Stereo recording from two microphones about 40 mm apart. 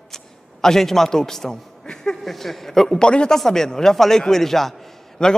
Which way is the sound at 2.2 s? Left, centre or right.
Centre.